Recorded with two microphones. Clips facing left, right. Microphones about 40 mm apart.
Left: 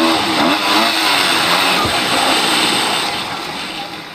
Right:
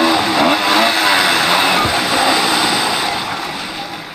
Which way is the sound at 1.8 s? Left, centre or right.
Left.